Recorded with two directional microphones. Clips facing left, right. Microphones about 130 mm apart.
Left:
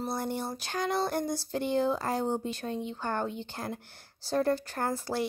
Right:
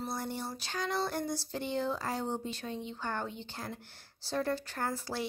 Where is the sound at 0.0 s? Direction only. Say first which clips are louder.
Left 5 dB; 55° left (ahead or behind).